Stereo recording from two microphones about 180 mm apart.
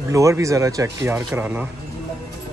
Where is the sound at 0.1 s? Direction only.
15° right (ahead or behind).